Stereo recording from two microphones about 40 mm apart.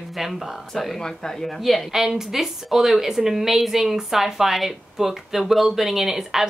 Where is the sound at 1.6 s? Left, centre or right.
Centre.